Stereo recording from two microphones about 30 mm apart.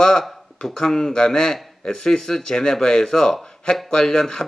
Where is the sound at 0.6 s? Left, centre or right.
Centre.